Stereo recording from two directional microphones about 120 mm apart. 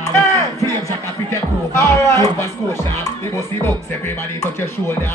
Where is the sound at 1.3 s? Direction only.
25° left (ahead or behind).